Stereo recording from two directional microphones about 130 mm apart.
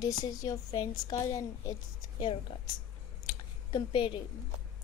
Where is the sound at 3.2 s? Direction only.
40° left (ahead or behind).